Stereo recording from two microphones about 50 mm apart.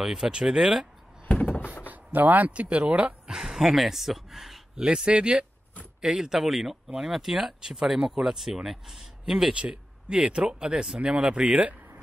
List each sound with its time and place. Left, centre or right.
0.0 s speech: centre
1.3 s door: left
1.9 s speech: right
3.3 s speech: centre
4.7 s speech: centre
9.5 s speech: right